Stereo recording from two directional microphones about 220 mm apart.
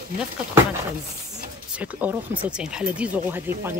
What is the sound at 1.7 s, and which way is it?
Speech, 5° right (ahead or behind).